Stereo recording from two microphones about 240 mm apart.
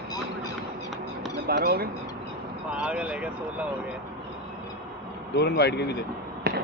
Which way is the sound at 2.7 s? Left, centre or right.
Centre.